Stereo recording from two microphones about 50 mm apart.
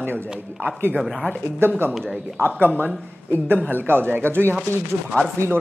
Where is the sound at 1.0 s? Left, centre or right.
Centre.